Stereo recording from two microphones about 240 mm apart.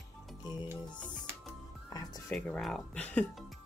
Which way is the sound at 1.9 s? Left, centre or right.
Centre.